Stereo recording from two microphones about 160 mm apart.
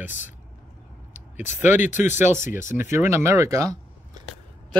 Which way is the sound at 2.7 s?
15° right (ahead or behind).